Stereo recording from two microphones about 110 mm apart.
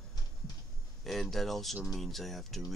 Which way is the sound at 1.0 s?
Centre (ahead or behind).